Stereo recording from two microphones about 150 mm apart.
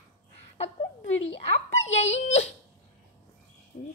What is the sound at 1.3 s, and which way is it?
A child's voice, 45° left (ahead or behind).